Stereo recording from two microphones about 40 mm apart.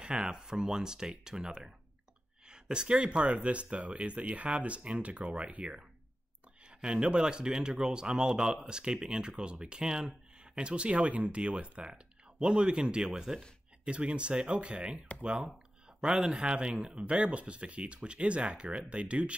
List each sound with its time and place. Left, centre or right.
0.0 s speech: right
6.8 s speech: right
16.0 s speech: centre